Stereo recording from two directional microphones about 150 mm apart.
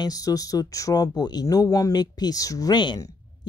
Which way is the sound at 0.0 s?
25° left (ahead or behind).